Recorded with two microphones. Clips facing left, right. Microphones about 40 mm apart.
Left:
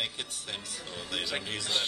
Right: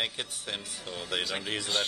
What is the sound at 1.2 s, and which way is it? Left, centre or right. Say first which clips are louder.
Speech: right 1 dB; centre.